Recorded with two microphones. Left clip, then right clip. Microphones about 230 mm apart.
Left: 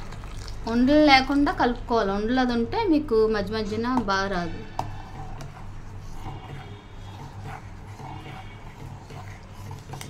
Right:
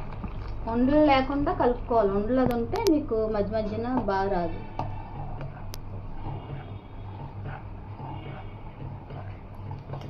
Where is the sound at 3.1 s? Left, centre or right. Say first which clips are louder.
Left 4 dB; left.